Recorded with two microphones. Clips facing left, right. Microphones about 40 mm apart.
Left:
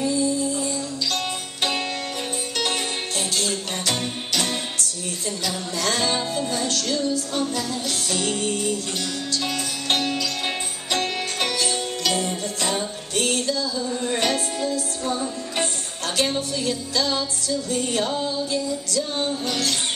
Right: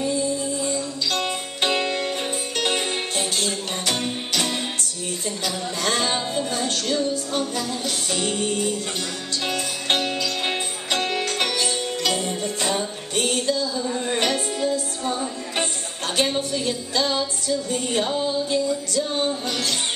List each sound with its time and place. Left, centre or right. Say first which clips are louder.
1.1 s music: right 2 dB; centre
3.9 s music: right 1 dB; centre
5.4 s music: even; right
8.1 s music: even; right
12.3 s music: right 1 dB; centre
13.1 s music: right 1 dB; right
14.0 s music: left 1 dB; right